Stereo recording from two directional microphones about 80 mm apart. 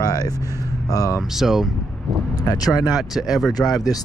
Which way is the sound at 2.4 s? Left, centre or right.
Left.